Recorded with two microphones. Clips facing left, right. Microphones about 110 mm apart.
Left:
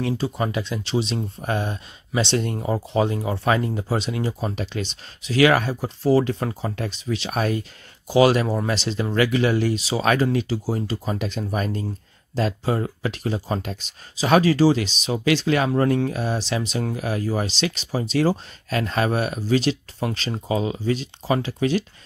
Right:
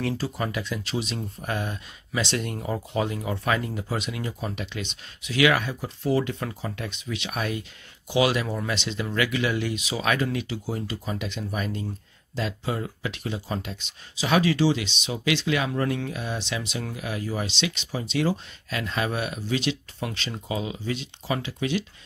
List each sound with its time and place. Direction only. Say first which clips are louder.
0.0 s speech: left 4 dB; 25° left (ahead or behind); by 21.8 s 40° left (ahead or behind)